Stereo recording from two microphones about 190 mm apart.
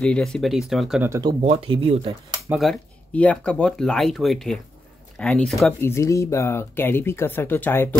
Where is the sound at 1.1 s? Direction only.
20° right (ahead or behind).